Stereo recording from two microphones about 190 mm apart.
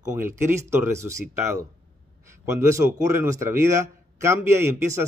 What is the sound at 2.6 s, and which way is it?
Speech, 15° right (ahead or behind).